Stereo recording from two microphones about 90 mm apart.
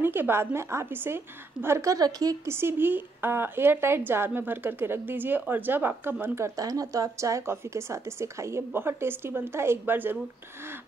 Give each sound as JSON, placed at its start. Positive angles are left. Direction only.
{"t": 0.0, "sound": "speech", "side_deg": -25}
{"t": 2.4, "sound": "speech", "side_deg": -25}